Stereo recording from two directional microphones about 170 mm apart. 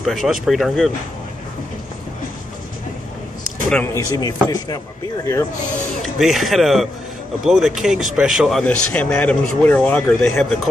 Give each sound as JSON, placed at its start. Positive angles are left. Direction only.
{"t": 0.0, "sound": "speech", "side_deg": 0}
{"t": 3.7, "sound": "speech", "side_deg": 15}
{"t": 6.1, "sound": "speech", "side_deg": 0}